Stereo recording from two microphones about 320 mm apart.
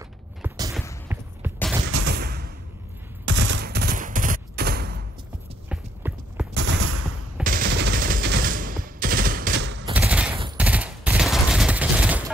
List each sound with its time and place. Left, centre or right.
0.4 s a sound: centre
2.0 s a sound: right
3.3 s fusillade: right
5.7 s clip-clop: centre
6.5 s fusillade: right
9.9 s fusillade: centre